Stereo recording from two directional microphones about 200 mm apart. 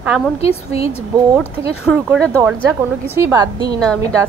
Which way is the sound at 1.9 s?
5° left (ahead or behind).